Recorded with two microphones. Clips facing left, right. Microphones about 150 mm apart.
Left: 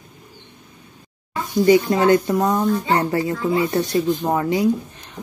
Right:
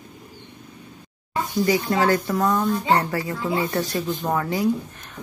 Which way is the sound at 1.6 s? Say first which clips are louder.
Left 7 dB; 25° left (ahead or behind).